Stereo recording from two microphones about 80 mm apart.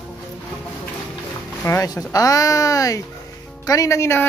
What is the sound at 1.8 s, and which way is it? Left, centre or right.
Speech, left.